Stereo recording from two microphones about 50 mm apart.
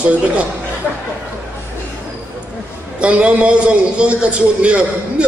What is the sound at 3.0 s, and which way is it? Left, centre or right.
A man's voice, right.